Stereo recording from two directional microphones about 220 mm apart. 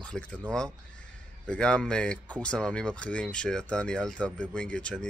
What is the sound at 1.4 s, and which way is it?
Speech, 5° left (ahead or behind).